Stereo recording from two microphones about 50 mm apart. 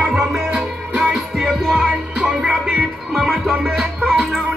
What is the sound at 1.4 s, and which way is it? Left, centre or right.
Music, centre.